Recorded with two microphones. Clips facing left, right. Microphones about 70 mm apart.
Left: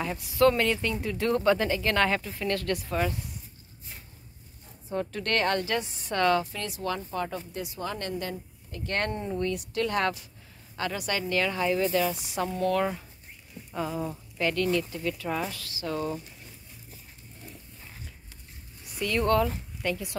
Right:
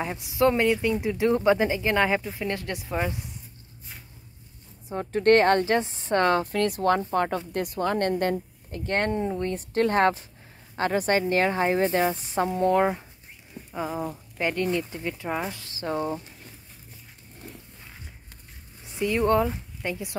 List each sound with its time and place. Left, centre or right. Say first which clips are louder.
0.0 s speech: even; right
4.8 s speech: right 10 dB; right
6.5 s speech: right 10 dB; right
18.9 s a woman's voice: right 3 dB; right